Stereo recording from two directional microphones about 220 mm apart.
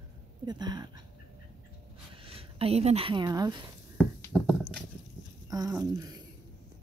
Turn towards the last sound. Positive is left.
turn(degrees=-15)  # may be behind; listen again after turning